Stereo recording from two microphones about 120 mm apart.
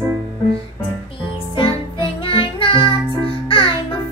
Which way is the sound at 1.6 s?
45° left (ahead or behind).